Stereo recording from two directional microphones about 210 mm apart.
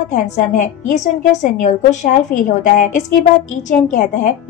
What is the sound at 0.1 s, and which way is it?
A woman's voice, 35° left (ahead or behind).